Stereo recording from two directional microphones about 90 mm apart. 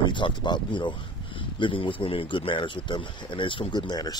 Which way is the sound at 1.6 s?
70° left (ahead or behind).